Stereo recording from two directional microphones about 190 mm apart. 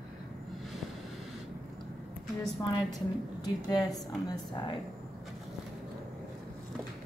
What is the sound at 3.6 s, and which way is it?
A woman's voice, 20° left (ahead or behind).